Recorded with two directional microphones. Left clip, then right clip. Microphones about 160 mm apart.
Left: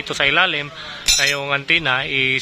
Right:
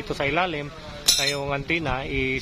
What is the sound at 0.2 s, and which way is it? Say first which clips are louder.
Speech: left 8 dB; 10° right (ahead or behind).